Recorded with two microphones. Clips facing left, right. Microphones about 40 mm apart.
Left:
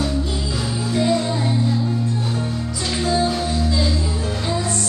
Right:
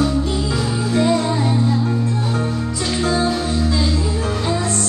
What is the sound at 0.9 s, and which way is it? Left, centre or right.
Music, centre.